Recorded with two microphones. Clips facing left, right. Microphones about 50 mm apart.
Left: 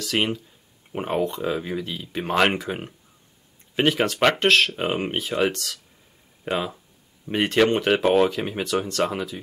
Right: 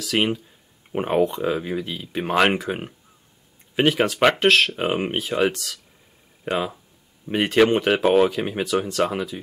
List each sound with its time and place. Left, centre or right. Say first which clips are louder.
0.0 s speech: right 2 dB; centre
0.9 s speech: right 4 dB; centre